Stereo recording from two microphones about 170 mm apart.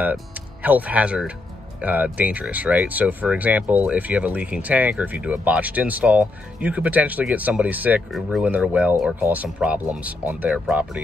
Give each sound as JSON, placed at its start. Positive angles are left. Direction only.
{"t": 0.0, "sound": "speech", "side_deg": -10}